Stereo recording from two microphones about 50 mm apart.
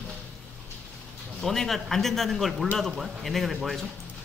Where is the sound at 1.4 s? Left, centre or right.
Centre.